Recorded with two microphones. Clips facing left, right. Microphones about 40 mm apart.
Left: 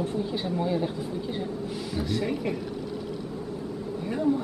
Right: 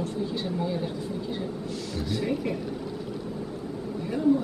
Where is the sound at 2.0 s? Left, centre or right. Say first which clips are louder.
Even; centre.